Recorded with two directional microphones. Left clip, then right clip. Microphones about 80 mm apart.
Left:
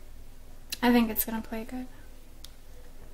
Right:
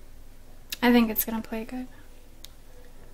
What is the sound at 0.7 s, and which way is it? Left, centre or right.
Speech, right.